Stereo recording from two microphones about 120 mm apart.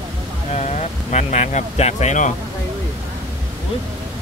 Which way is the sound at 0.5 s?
75° left (ahead or behind).